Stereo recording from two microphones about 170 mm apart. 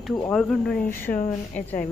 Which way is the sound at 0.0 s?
Centre (ahead or behind).